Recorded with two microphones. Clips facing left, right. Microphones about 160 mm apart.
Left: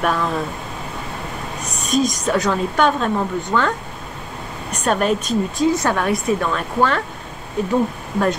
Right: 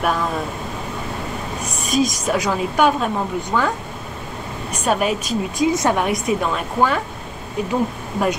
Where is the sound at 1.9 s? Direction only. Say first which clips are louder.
Left 1 dB; 10° right (ahead or behind).